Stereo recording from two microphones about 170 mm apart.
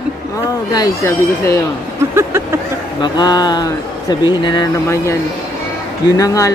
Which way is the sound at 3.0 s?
25° left (ahead or behind).